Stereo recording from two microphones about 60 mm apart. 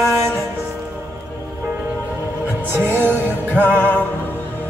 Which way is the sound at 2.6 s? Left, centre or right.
Right.